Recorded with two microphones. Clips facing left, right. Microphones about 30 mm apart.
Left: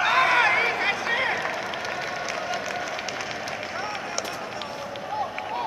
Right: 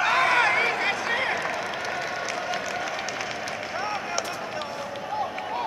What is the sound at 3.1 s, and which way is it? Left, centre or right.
Run, centre.